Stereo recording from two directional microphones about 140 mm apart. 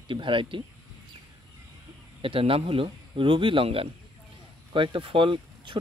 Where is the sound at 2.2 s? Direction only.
40° right (ahead or behind).